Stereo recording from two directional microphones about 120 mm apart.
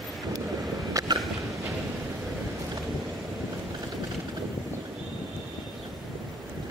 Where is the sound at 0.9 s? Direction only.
30° right (ahead or behind).